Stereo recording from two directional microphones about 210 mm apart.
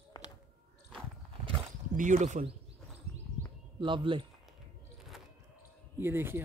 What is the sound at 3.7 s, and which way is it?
Speech, 25° right (ahead or behind).